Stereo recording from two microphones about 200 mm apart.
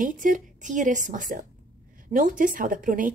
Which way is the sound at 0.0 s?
40° right (ahead or behind).